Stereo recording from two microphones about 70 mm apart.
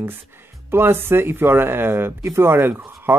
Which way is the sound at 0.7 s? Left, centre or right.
Right.